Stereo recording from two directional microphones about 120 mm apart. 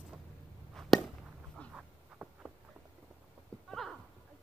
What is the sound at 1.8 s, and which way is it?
Insect, 10° right (ahead or behind).